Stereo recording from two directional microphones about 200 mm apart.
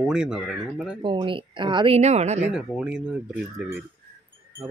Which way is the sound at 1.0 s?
25° right (ahead or behind).